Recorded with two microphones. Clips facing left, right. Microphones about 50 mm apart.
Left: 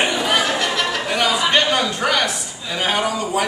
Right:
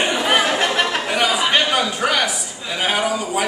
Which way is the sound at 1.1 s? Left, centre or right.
Centre.